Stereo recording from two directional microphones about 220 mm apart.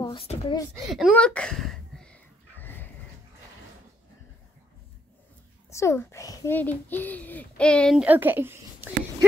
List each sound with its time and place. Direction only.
0.0 s speech: 25° left (ahead or behind)
0.7 s a sound: centre (ahead or behind)
5.7 s a child's voice: 15° left (ahead or behind); by 8.9 s 10° right (ahead or behind)